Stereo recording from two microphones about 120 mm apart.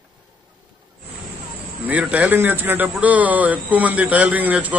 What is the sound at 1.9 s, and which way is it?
A man's voice, 10° right (ahead or behind).